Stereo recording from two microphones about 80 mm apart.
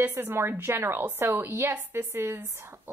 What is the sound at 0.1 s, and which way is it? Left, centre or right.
Speech, right.